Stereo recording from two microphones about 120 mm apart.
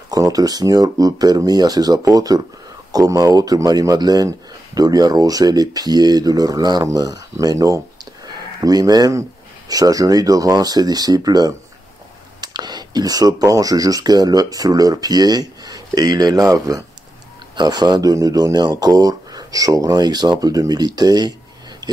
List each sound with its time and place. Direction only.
0.1 s speech: 30° right (ahead or behind)